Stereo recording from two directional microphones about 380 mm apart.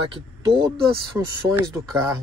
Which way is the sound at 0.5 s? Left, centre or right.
Centre.